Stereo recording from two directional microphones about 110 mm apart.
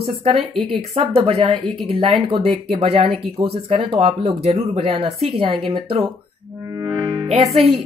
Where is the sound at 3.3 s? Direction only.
55° right (ahead or behind).